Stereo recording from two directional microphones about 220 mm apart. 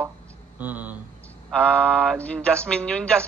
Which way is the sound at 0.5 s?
5° right (ahead or behind).